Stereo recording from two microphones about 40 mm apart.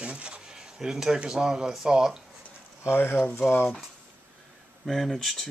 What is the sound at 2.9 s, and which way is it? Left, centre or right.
Speech, left.